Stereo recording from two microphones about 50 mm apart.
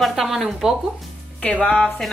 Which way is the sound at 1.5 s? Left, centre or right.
Centre.